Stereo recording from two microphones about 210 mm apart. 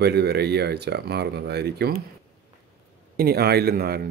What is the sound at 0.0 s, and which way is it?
Speech, 50° right (ahead or behind).